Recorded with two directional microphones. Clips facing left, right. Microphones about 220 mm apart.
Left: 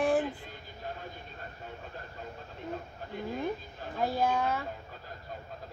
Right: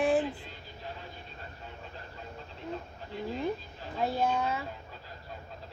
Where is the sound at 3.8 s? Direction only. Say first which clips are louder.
Left 1 dB; 50° left (ahead or behind).